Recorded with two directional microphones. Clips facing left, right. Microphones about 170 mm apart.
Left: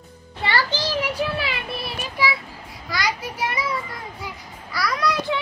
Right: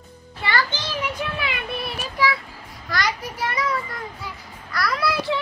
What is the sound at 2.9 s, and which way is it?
Child singing, 10° left (ahead or behind).